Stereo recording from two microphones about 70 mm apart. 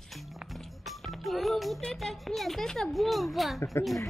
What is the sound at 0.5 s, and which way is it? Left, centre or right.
Music, centre.